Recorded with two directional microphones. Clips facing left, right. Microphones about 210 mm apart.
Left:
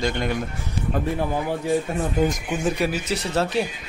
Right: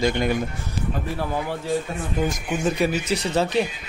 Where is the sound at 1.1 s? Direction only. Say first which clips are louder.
Left 2 dB; 15° left (ahead or behind).